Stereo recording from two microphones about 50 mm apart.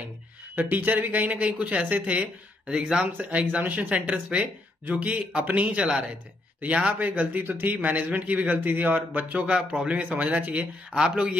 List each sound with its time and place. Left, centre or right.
0.6 s speech: right
3.2 s speech: right
9.6 s speech: centre